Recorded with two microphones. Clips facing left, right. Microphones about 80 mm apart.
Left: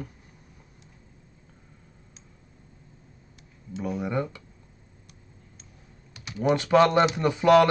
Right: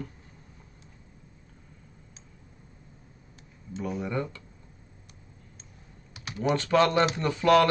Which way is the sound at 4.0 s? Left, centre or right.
Centre.